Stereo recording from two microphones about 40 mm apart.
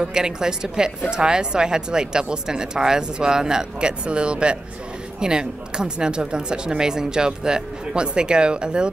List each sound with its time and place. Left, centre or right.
0.0 s a woman's voice: centre